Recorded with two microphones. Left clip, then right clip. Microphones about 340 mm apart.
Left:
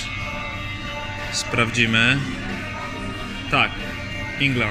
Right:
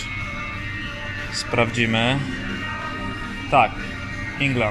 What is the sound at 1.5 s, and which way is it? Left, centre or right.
Speech, centre.